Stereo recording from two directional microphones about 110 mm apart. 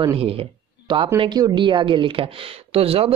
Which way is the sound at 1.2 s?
40° right (ahead or behind).